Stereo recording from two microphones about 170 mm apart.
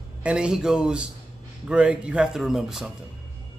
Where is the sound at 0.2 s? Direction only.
5° right (ahead or behind).